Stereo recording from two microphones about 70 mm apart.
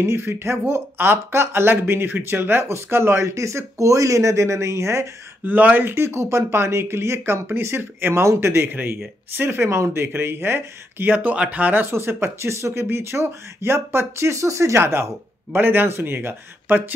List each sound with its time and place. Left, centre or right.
0.0 s speech: right
5.4 s speech: right
8.6 s speech: right